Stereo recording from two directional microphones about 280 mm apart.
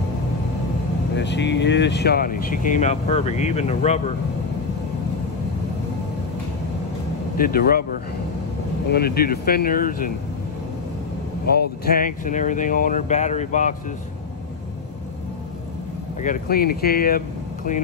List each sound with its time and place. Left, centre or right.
1.1 s speech: left
7.3 s speech: left
8.9 s speech: left
11.8 s speech: left
16.2 s speech: left